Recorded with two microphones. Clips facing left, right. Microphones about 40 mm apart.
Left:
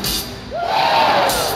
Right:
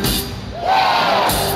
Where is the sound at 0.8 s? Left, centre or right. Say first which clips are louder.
Left 2 dB; centre.